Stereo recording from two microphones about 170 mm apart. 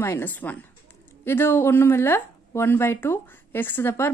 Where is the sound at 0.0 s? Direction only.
10° left (ahead or behind).